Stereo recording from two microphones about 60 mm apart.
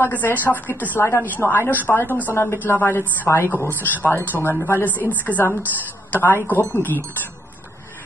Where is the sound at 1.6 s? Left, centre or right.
Right.